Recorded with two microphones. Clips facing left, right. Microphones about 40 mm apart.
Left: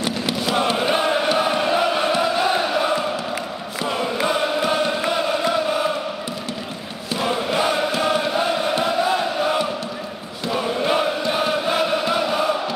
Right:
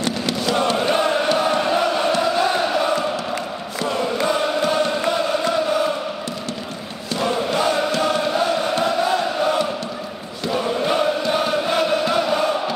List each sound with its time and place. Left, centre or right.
0.0 s chant: centre
7.2 s chant: centre